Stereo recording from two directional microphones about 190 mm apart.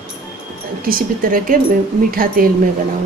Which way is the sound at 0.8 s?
50° right (ahead or behind).